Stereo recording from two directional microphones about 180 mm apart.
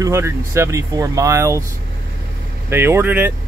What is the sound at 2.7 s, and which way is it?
Speech, 15° right (ahead or behind).